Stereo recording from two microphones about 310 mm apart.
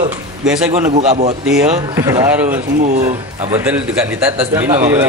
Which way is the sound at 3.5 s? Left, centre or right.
Centre.